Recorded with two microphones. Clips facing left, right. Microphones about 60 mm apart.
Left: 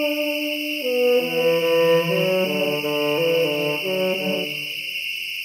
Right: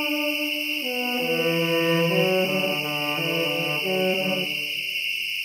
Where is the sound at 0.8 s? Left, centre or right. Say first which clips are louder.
Left 12 dB; centre.